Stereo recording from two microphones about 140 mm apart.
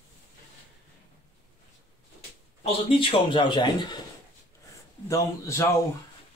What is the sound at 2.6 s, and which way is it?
Speech, 40° left (ahead or behind).